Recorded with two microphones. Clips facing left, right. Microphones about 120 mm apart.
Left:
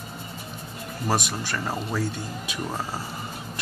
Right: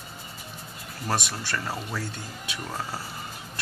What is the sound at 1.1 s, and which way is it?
Speech, 15° left (ahead or behind).